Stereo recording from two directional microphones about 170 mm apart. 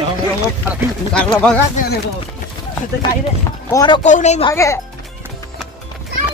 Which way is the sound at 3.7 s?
25° left (ahead or behind).